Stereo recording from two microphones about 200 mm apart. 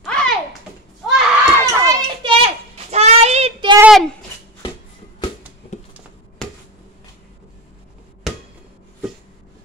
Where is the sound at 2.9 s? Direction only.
30° right (ahead or behind).